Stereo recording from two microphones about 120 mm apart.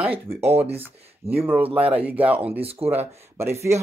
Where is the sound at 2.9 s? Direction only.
20° right (ahead or behind).